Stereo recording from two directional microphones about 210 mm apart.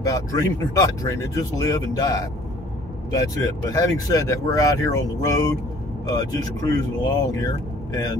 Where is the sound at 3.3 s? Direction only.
15° left (ahead or behind).